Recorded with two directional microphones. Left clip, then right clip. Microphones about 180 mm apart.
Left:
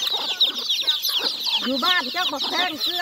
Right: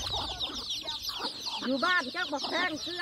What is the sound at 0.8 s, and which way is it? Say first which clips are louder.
Chicken: left 13 dB; 50° right (ahead or behind).